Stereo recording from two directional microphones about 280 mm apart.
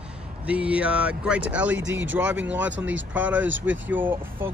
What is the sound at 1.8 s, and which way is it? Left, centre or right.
Speech, right.